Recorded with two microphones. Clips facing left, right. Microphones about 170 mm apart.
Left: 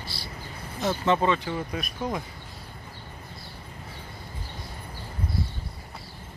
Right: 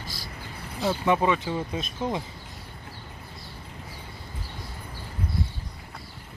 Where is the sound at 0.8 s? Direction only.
10° right (ahead or behind).